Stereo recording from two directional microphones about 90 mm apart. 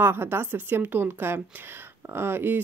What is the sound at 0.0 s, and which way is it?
Speech, 25° right (ahead or behind).